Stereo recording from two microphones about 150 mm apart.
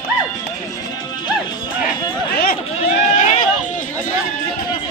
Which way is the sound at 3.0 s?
50° left (ahead or behind).